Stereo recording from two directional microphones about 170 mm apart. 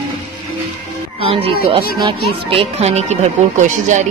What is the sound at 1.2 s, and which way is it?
Speech, 35° right (ahead or behind).